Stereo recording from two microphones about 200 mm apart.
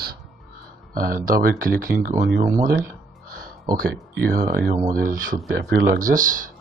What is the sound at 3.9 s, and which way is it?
Speech, 45° right (ahead or behind).